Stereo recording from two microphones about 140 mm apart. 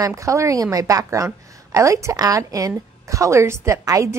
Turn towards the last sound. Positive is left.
turn(degrees=-25)  # may be behind; listen again after turning